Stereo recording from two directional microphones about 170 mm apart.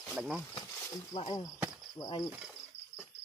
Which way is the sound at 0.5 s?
20° left (ahead or behind).